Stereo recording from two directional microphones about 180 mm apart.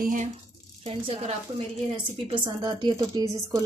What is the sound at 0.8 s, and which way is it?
A woman's voice, 35° right (ahead or behind).